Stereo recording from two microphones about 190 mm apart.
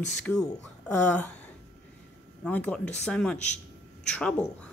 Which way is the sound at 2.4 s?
5° left (ahead or behind).